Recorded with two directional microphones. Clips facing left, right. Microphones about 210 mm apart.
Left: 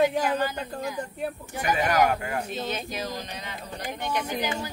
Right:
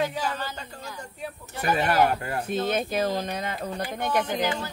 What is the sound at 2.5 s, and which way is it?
Speech, 50° right (ahead or behind).